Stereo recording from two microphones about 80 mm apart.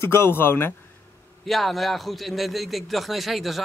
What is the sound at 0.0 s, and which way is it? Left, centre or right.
Speech, left.